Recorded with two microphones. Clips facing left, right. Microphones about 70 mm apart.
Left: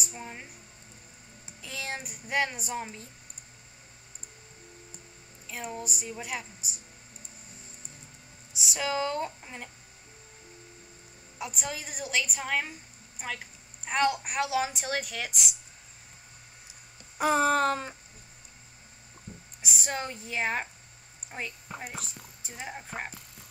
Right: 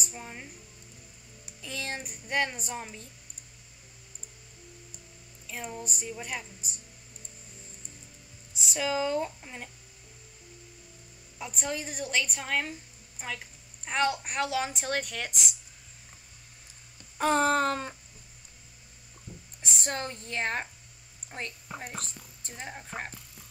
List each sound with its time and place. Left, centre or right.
0.0 s speech: centre
1.6 s speech: centre
5.5 s speech: centre
8.5 s speech: centre
11.3 s speech: centre
13.8 s speech: centre
17.2 s speech: centre
19.3 s squish: left
19.6 s speech: centre
21.6 s speech: centre